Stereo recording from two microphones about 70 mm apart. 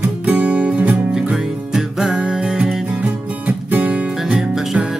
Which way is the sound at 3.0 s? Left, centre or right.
Right.